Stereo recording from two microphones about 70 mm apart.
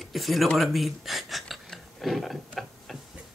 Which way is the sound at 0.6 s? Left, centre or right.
Centre.